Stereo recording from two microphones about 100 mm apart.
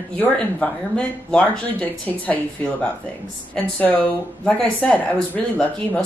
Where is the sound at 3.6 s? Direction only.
10° left (ahead or behind).